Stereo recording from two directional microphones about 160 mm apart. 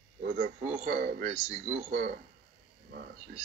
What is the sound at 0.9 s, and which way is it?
Speech, 75° right (ahead or behind).